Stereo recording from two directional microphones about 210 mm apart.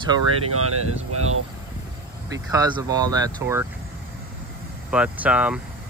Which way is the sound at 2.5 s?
20° right (ahead or behind).